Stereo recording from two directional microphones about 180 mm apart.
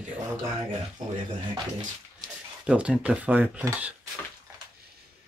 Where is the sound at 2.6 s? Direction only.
5° right (ahead or behind).